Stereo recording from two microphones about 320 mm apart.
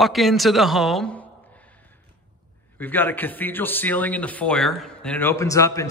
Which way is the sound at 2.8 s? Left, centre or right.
Centre.